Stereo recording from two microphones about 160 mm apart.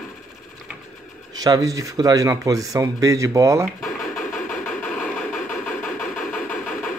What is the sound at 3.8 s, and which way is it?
Vehicle, centre (ahead or behind).